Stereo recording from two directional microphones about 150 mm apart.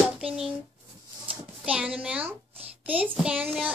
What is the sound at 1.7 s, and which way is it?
Speech, 10° right (ahead or behind).